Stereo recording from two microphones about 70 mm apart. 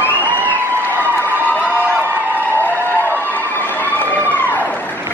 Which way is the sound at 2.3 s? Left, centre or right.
Left.